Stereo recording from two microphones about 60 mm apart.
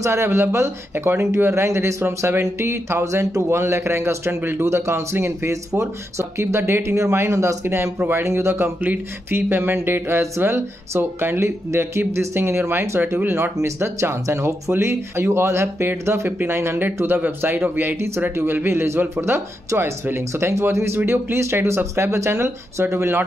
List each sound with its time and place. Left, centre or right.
0.0 s speech: right
5.5 s speech: right
8.8 s speech: right
16.3 s speech: right